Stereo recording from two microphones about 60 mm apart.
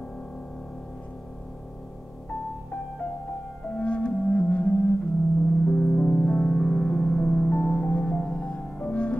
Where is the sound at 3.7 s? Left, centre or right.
Centre.